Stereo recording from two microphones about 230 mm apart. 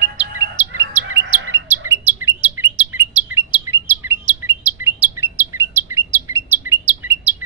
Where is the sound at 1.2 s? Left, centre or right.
Right.